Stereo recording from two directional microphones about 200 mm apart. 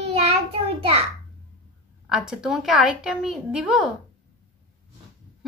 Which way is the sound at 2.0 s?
Centre (ahead or behind).